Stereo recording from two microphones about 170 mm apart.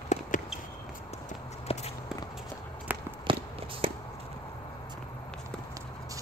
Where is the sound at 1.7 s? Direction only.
35° left (ahead or behind).